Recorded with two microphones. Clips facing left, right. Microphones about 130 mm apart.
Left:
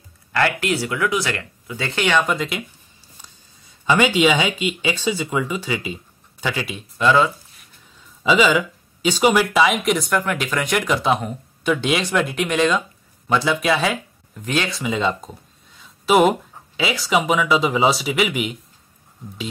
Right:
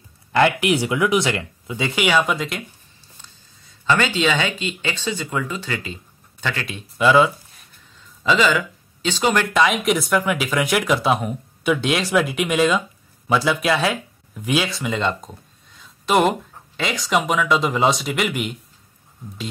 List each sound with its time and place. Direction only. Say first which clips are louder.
0.3 s speech: right 3 dB; 20° right (ahead or behind); by 2.6 s centre (ahead or behind)
3.2 s speech: left 2 dB; 15° left (ahead or behind)
7.0 s speech: right 1 dB; 10° right (ahead or behind)
8.2 s speech: left 2 dB; 10° left (ahead or behind)